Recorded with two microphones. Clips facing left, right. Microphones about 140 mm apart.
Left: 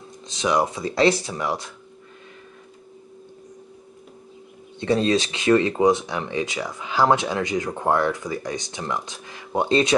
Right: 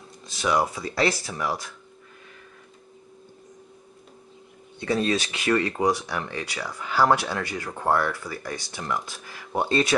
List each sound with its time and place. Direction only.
0.3 s speech: 20° left (ahead or behind)
4.7 s speech: 25° left (ahead or behind)